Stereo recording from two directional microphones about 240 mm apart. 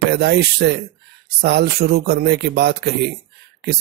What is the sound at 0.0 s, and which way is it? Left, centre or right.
Speech, right.